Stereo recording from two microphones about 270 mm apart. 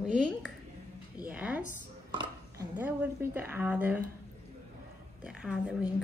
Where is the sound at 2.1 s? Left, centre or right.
Centre.